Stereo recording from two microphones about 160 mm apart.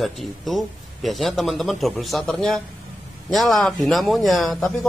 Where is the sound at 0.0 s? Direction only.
Centre (ahead or behind).